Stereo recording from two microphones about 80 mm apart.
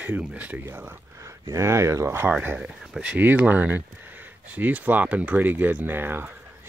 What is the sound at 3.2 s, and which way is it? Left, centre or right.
Speech, right.